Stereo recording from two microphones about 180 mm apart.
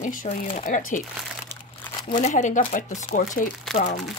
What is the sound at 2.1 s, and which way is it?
Speech, 45° left (ahead or behind).